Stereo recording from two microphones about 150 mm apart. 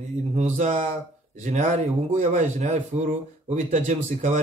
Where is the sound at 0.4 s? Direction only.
50° right (ahead or behind).